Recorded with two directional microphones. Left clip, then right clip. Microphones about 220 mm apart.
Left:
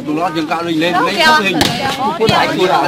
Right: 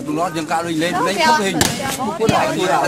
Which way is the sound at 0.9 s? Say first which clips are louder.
Left 5 dB; centre (ahead or behind).